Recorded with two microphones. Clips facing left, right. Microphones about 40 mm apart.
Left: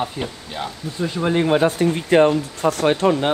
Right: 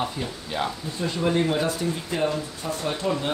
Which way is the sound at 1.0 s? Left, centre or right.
Left.